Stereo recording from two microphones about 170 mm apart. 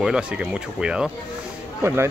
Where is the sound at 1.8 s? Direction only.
15° right (ahead or behind).